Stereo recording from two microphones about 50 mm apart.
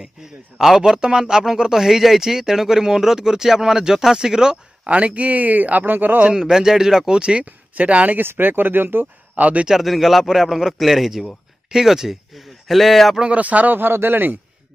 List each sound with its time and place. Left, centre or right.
0.0 s a man's voice: centre
4.8 s a man's voice: right
6.2 s a man's voice: centre
7.2 s speech: centre
7.4 s speech: right
8.2 s speech: right
9.3 s speech: right
9.7 s a man's voice: centre
13.2 s speech: right
13.7 s speech: right